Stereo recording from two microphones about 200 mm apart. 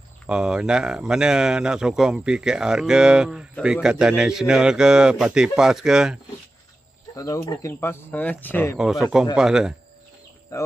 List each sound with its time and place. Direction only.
0.3 s speech: 5° right (ahead or behind)
7.2 s speech: 15° left (ahead or behind)
8.7 s speech: centre (ahead or behind)
10.5 s speech: 15° left (ahead or behind)